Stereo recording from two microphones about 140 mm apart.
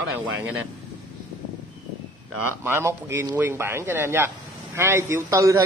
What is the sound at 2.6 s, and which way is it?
A man's voice, 15° right (ahead or behind).